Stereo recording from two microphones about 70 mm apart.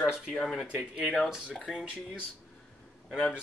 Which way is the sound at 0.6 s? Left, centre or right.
Centre.